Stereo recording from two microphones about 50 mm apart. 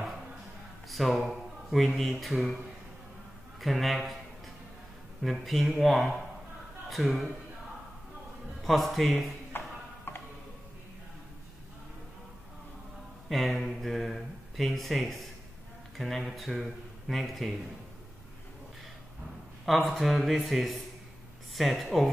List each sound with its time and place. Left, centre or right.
0.8 s a sound: centre
2.0 s speech: centre
3.6 s speech: centre
5.2 s speech: centre
8.6 s speech: centre
9.5 s a sound: left
10.1 s music: left
13.3 s speech: centre
19.9 s speech: centre